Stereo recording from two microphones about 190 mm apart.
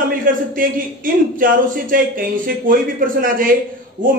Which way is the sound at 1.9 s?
45° right (ahead or behind).